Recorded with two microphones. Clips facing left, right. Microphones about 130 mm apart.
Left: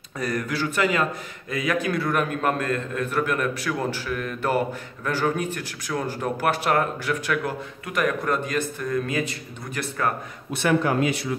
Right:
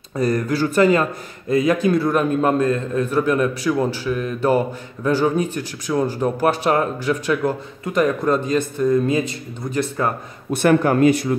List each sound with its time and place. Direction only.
0.2 s speech: 35° right (ahead or behind)
10.5 s speech: 50° right (ahead or behind)